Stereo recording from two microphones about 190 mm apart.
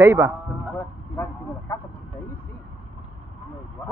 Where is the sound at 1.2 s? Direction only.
15° left (ahead or behind).